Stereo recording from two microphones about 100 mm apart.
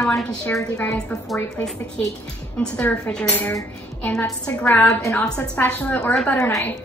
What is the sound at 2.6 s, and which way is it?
Speech, 10° left (ahead or behind).